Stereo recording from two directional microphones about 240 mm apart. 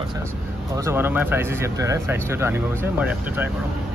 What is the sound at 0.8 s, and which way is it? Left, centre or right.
Speech, centre.